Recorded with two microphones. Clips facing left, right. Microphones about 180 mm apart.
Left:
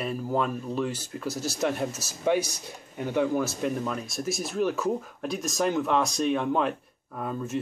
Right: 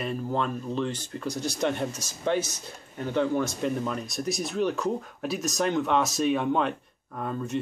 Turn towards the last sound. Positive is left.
turn(degrees=5)  # may be behind; listen again after turning